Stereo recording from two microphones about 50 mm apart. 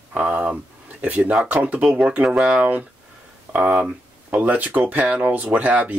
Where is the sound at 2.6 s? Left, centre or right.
Right.